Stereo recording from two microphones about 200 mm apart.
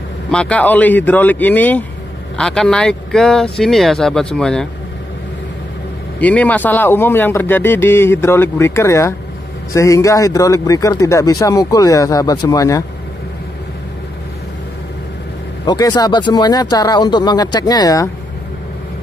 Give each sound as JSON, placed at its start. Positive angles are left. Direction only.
{"t": 0.3, "sound": "speech", "side_deg": 5}
{"t": 6.1, "sound": "speech", "side_deg": 5}
{"t": 15.6, "sound": "speech", "side_deg": 20}